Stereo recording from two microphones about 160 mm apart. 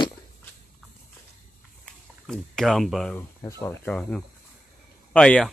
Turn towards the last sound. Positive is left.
turn(degrees=5)  # may be behind; listen again after turning